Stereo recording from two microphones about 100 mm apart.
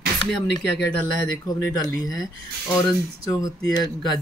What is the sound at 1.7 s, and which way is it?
Speech, 35° left (ahead or behind).